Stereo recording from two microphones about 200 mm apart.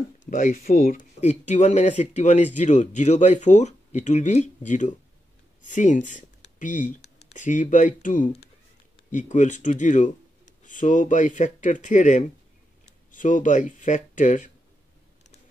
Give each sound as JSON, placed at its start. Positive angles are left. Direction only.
{"t": 0.2, "sound": "speech", "side_deg": 40}